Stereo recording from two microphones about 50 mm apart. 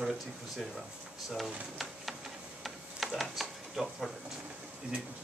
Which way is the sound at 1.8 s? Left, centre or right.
Centre.